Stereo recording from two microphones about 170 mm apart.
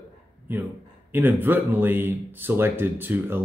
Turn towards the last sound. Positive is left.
turn(degrees=-10)  # may be behind; listen again after turning